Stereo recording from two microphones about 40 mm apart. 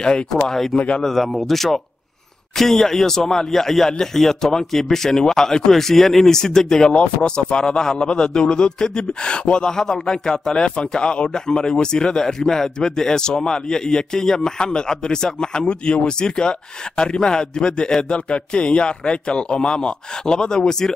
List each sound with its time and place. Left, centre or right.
0.3 s speech: centre
0.7 s a man's voice: left
1.0 s a man's voice: centre